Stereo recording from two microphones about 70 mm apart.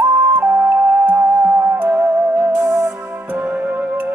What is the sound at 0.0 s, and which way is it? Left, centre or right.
Music, right.